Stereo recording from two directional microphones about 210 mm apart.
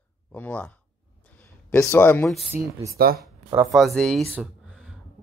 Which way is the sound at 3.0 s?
45° right (ahead or behind).